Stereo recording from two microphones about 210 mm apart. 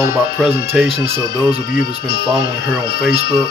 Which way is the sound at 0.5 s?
50° left (ahead or behind).